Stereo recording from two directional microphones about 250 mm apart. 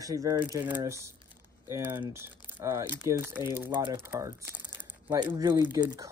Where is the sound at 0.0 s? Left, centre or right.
Centre.